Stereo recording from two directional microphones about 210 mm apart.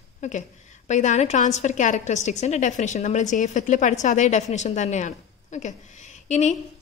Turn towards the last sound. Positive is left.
turn(degrees=35)  # may be behind; listen again after turning